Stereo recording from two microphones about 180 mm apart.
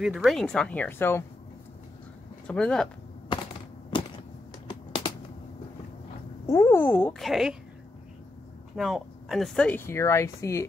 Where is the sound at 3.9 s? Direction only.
25° left (ahead or behind).